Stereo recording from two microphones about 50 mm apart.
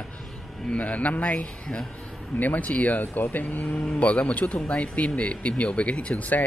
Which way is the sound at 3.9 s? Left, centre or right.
Left.